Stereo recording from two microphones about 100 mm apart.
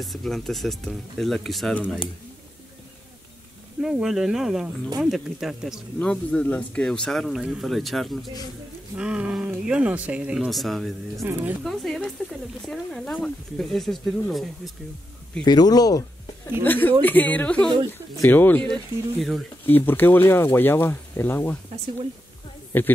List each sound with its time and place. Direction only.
0.0 s speech: centre (ahead or behind)
3.8 s speech: 5° right (ahead or behind)
5.9 s speech: 10° left (ahead or behind)
8.9 s a sound: 10° right (ahead or behind)
9.7 s speech: 10° right (ahead or behind)
11.1 s speech: 20° right (ahead or behind)
11.6 s speech: 5° left (ahead or behind)
15.4 s speech: 45° left (ahead or behind)
16.6 s speech: 20° left (ahead or behind)
18.7 s speech: centre (ahead or behind)
19.6 s speech: 20° left (ahead or behind)
22.7 s speech: 20° left (ahead or behind)